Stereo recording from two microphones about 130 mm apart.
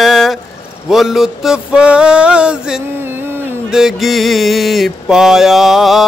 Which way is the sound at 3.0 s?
15° right (ahead or behind).